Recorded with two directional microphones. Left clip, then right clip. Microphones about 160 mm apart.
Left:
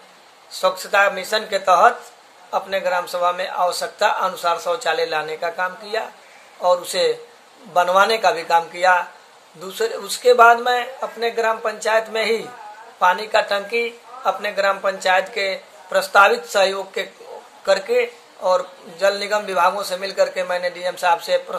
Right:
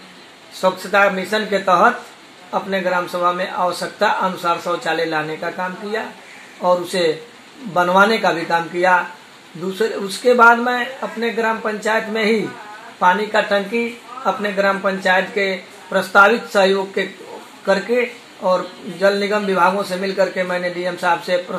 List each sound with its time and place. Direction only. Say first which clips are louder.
0.6 s a man's voice: right 2 dB; 30° left (ahead or behind)